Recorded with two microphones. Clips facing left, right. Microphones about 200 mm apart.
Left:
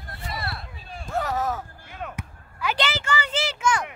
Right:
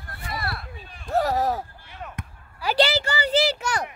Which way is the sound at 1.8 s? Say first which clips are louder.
Left 3 dB; 50° left (ahead or behind).